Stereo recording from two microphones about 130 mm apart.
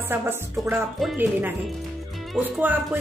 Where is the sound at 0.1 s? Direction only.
15° right (ahead or behind).